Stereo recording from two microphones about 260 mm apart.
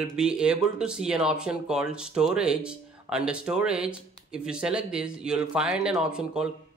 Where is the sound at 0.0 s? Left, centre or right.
Centre.